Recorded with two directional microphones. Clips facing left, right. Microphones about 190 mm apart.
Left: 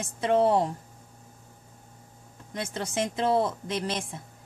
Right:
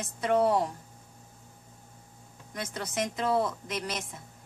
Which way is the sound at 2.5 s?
25° left (ahead or behind).